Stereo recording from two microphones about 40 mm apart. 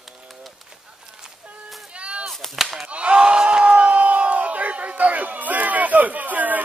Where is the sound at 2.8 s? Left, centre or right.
Right.